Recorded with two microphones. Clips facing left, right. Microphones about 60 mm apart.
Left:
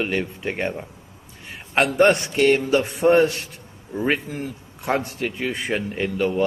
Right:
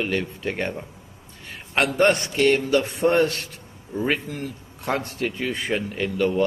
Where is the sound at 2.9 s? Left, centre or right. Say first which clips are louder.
Left 3 dB; centre.